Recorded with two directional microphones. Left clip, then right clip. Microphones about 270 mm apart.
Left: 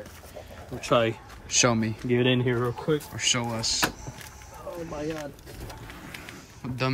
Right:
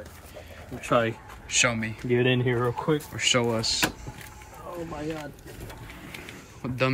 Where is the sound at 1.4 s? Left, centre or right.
Centre.